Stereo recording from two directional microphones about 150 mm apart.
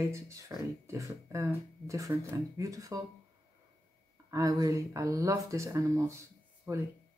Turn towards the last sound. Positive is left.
turn(degrees=-15)  # may be behind; listen again after turning